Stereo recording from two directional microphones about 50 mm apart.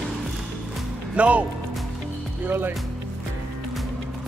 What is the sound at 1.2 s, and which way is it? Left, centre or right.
Speech, right.